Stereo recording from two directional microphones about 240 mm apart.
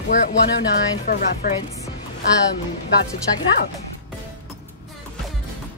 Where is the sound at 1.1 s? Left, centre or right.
Left.